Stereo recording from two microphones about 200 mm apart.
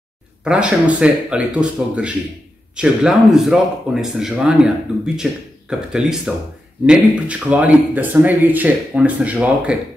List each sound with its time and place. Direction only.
0.4 s speech: 5° right (ahead or behind)